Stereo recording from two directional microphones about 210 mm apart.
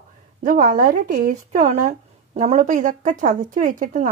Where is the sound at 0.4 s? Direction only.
40° right (ahead or behind).